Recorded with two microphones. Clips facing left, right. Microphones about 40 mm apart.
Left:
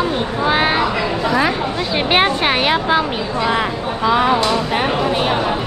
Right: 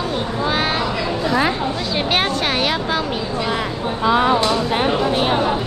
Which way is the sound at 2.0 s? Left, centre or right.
Left.